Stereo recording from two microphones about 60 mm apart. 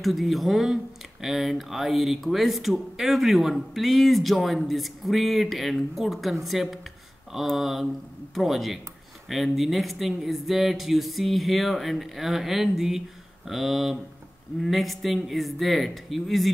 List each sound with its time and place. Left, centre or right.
0.0 s speech: centre